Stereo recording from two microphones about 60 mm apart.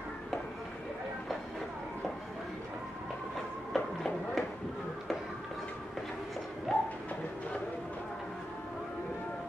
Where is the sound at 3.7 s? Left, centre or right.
Centre.